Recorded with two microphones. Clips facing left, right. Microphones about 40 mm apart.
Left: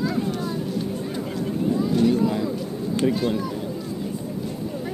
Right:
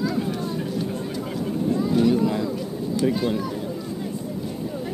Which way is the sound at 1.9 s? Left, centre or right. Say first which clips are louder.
Right 1 dB; centre.